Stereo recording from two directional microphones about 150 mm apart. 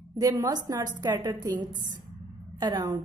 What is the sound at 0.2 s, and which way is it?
A woman's voice, 25° right (ahead or behind).